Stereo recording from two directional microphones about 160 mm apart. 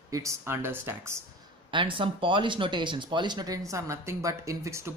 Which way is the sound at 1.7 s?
30° right (ahead or behind).